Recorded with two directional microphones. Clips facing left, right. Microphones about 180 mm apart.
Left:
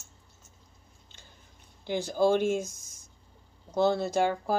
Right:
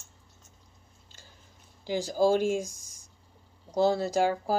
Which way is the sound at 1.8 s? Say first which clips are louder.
Right 1 dB; 60° left (ahead or behind).